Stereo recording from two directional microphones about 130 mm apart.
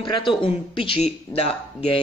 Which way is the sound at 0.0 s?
40° left (ahead or behind).